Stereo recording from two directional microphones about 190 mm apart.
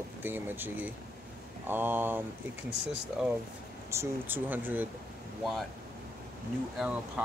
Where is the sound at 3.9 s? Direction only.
10° right (ahead or behind).